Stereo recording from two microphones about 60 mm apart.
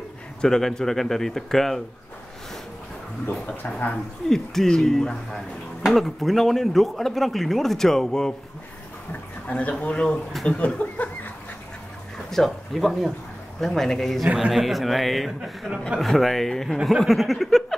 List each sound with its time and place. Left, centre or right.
0.4 s speech: centre
3.3 s speech: left
4.3 s speech: centre
9.5 s speech: left
10.3 s speech: centre
10.8 s a sound: left
12.3 s speech: centre
14.2 s a man's voice: centre
14.5 s speech: centre
16.7 s a man's voice: centre
17.0 s a sound: centre